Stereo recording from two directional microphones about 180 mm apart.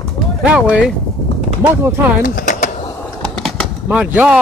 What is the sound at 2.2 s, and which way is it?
Speech, 50° left (ahead or behind).